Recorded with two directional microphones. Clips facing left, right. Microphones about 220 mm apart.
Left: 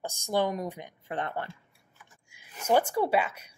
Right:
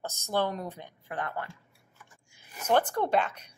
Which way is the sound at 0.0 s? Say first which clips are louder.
Left 2 dB; 15° left (ahead or behind).